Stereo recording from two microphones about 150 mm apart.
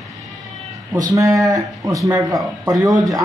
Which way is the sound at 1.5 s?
20° right (ahead or behind).